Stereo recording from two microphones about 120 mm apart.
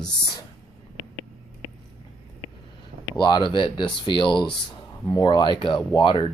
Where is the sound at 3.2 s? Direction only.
40° left (ahead or behind).